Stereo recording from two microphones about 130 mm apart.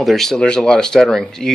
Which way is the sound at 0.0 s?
Centre (ahead or behind).